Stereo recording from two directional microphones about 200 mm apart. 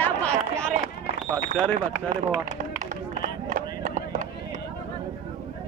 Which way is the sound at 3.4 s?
40° right (ahead or behind).